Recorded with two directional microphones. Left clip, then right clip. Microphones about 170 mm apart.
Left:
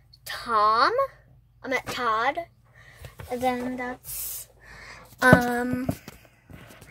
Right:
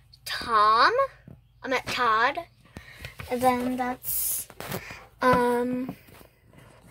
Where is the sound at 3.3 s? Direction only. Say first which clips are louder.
Right 3 dB; 25° right (ahead or behind).